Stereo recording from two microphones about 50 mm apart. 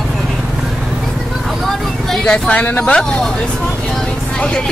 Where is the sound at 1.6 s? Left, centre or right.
Centre.